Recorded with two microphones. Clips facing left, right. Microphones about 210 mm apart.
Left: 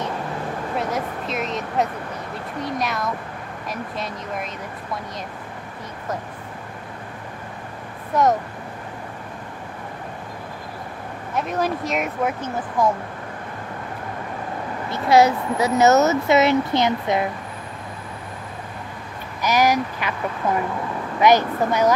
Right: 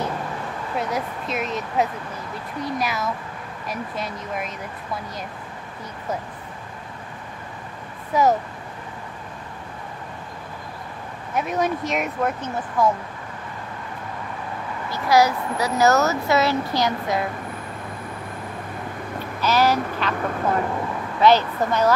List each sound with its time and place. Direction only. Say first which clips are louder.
0.7 s speech: even; centre (ahead or behind)
8.1 s speech: even; 5° right (ahead or behind)
11.3 s speech: even; centre (ahead or behind)
14.9 s speech: left 3 dB; 25° left (ahead or behind)
19.4 s speech: left 1 dB; 15° left (ahead or behind)
21.2 s speech: left 1 dB; 15° left (ahead or behind)